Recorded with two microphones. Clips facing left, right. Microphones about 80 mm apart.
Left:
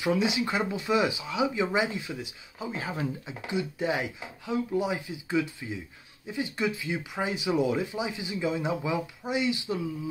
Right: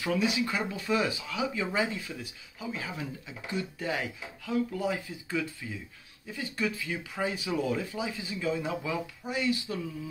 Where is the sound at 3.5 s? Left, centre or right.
Centre.